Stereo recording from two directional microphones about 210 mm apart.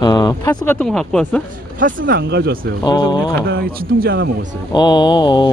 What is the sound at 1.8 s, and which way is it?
Speech, 40° right (ahead or behind).